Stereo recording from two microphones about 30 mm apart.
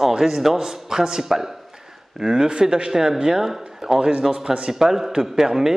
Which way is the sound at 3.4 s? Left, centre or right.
Centre.